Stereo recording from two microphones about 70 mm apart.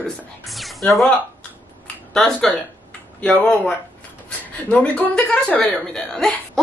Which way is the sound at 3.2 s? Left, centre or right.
Left.